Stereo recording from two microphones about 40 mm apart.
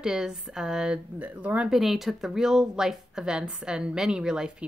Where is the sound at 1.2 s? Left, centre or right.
Right.